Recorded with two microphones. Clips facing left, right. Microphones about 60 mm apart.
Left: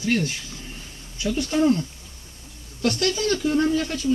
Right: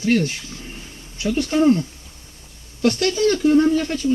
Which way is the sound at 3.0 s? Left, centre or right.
Right.